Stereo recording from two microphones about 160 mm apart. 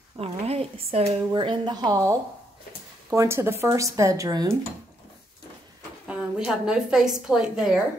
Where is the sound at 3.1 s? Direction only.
15° right (ahead or behind).